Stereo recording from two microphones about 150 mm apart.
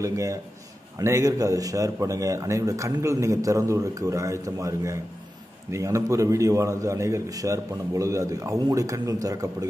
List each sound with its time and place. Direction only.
0.0 s speech: 20° right (ahead or behind)